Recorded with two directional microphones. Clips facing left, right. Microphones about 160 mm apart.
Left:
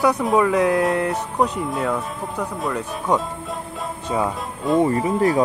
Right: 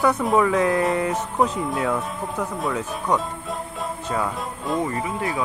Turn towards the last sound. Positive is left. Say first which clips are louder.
# left 8 dB
turn(degrees=35)  # may be behind; listen again after turning